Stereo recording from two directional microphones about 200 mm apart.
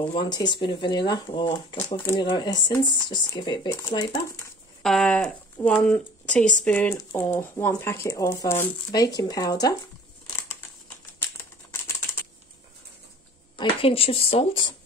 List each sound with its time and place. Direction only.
0.0 s speech: 20° left (ahead or behind)
4.8 s speech: 5° left (ahead or behind); by 9.8 s 20° left (ahead or behind)
11.7 s typing: 10° left (ahead or behind)
13.6 s speech: 25° left (ahead or behind)